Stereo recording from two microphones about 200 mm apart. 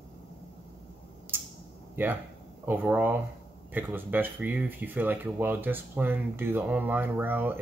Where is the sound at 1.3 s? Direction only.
10° right (ahead or behind).